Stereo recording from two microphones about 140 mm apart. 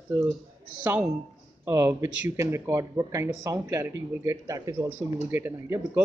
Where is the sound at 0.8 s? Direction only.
10° right (ahead or behind); by 4.9 s 25° right (ahead or behind).